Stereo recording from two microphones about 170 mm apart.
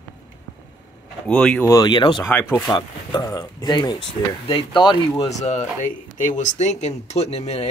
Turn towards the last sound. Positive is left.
turn(degrees=40)  # may be behind; listen again after turning